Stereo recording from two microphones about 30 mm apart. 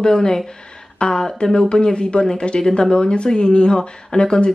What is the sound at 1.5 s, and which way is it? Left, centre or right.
Speech, left.